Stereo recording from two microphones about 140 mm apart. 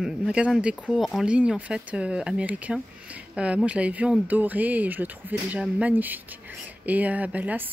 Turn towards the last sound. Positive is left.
turn(degrees=-10)  # may be behind; listen again after turning